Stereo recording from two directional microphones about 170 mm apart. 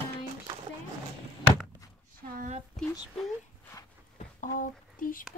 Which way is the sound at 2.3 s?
45° right (ahead or behind).